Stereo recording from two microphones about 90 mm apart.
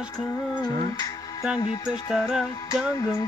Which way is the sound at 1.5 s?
40° left (ahead or behind).